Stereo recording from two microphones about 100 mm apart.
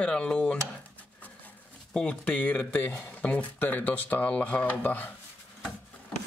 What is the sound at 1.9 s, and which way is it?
Speech, 10° left (ahead or behind).